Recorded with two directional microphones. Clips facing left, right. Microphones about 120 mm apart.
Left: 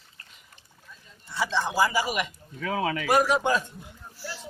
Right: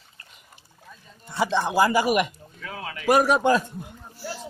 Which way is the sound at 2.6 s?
90° left.